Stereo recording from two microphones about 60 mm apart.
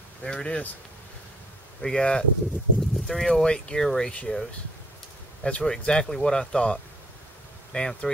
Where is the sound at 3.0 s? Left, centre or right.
Centre.